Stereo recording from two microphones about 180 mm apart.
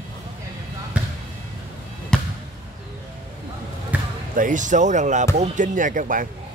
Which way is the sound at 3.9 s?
10° right (ahead or behind).